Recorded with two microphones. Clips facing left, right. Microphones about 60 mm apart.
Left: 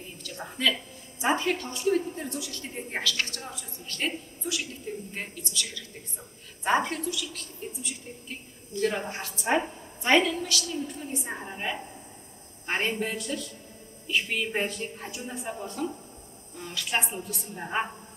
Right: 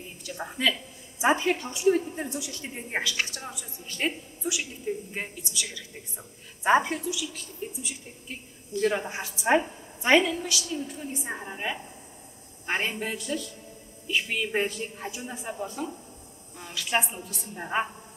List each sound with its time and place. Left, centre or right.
0.2 s a woman's voice: centre